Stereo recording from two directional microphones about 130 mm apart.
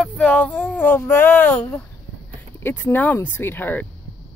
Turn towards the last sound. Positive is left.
turn(degrees=15)  # may be behind; listen again after turning